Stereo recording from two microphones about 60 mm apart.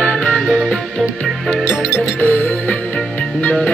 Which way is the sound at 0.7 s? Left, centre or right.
Centre.